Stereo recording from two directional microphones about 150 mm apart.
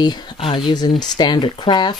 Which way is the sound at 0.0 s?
30° left (ahead or behind).